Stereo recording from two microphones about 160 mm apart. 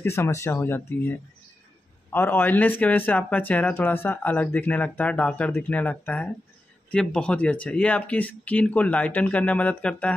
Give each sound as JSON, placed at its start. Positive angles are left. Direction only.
{"t": 0.0, "sound": "speech", "side_deg": 15}
{"t": 2.1, "sound": "speech", "side_deg": 10}